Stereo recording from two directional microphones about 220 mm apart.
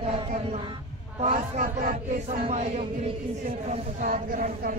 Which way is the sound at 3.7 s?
40° right (ahead or behind).